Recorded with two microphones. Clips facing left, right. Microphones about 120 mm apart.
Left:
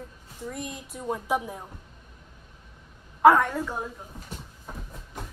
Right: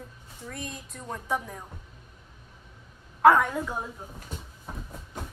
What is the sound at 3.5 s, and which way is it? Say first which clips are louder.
Speech: left 1 dB; 10° right (ahead or behind).